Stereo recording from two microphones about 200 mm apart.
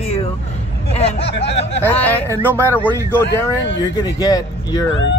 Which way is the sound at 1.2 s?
60° left (ahead or behind).